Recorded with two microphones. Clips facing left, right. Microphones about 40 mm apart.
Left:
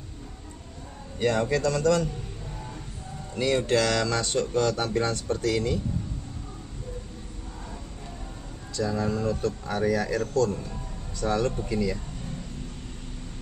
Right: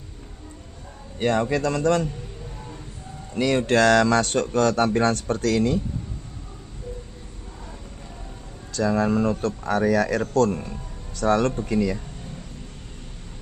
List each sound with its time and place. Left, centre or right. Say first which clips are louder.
1.2 s a man's voice: right 2 dB; right
3.3 s a man's voice: right 4 dB; right
8.7 s a man's voice: right 6 dB; right